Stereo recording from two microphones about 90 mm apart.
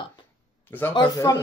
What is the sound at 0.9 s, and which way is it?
Speech, 45° left (ahead or behind).